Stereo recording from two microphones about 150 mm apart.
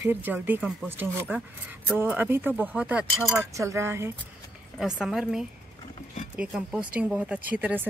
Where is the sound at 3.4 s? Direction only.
20° right (ahead or behind).